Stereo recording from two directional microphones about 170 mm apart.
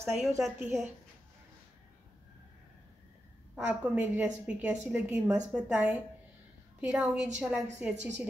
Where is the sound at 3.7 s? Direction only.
10° right (ahead or behind).